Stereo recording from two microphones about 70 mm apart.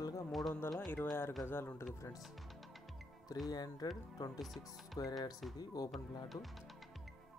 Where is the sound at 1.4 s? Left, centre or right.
Left.